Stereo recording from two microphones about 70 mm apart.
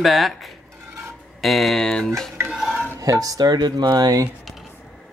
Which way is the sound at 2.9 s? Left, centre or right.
Right.